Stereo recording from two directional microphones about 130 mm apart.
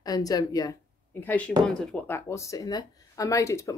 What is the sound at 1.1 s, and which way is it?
Speech, 10° left (ahead or behind).